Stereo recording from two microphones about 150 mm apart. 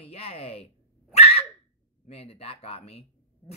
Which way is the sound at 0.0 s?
40° left (ahead or behind).